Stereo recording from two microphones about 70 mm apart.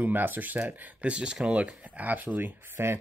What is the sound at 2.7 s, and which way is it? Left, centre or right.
Speech, right.